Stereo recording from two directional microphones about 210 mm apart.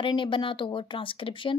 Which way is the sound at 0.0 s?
25° left (ahead or behind).